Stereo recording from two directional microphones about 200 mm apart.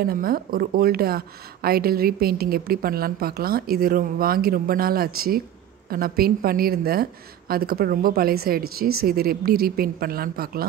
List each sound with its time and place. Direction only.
0.0 s a woman's voice: 45° right (ahead or behind)